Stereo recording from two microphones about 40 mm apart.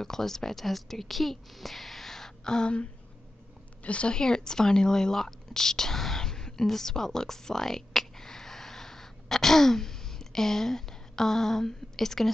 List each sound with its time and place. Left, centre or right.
0.0 s a woman's voice: centre; by 4.1 s left
4.1 s speech: centre